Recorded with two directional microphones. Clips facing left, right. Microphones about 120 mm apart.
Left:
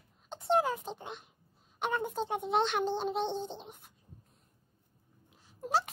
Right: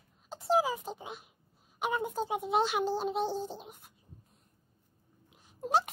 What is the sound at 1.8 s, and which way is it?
Speech, 5° right (ahead or behind).